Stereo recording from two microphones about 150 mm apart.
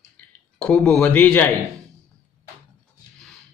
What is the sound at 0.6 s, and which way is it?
Speech, 5° left (ahead or behind).